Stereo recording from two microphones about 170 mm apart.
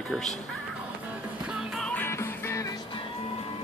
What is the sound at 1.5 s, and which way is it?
Music, 5° right (ahead or behind).